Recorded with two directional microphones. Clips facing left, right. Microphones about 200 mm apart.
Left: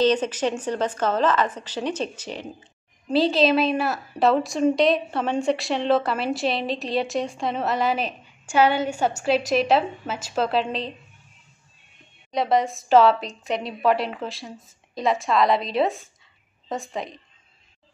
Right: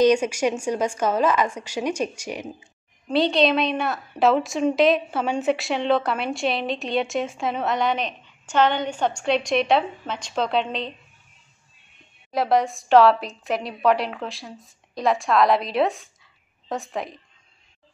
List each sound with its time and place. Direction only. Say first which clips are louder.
0.0 s a woman's voice: right 2 dB; 10° right (ahead or behind)
3.1 s a woman's voice: even; centre (ahead or behind)
12.3 s a woman's voice: right 1 dB; centre (ahead or behind)